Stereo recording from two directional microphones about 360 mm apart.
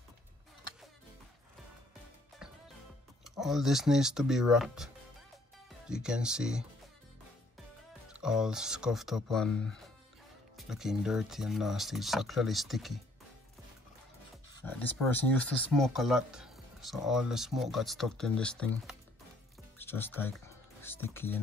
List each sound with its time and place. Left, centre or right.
3.3 s speech: centre
8.1 s speech: centre
14.5 s speech: centre